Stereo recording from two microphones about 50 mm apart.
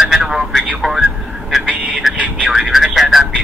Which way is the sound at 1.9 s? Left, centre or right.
Centre.